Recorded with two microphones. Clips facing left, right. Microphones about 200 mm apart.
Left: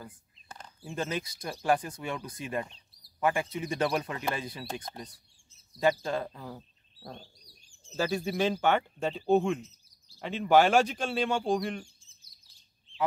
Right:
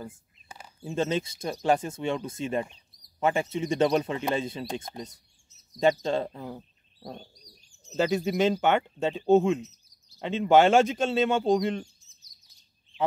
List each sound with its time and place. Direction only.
0.7 s speech: 25° right (ahead or behind)
12.0 s chirp: 30° left (ahead or behind)